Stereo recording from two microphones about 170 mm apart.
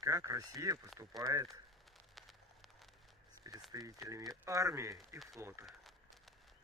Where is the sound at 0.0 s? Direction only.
20° right (ahead or behind).